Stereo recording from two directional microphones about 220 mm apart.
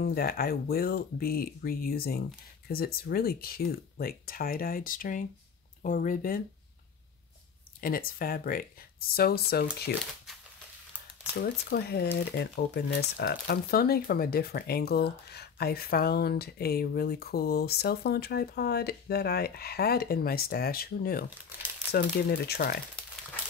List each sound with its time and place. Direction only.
0.0 s speech: 45° left (ahead or behind)
7.8 s speech: 40° left (ahead or behind)
11.4 s speech: 45° left (ahead or behind)